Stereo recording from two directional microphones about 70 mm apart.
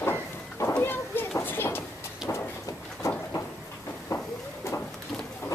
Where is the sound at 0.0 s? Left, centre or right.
Left.